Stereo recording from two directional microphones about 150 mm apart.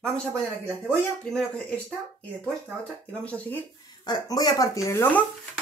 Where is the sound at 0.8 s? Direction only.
5° left (ahead or behind).